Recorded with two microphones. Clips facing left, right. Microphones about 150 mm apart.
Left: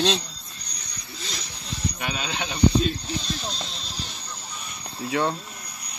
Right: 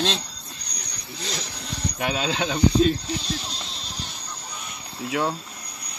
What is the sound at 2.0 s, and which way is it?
Speech, 65° right (ahead or behind).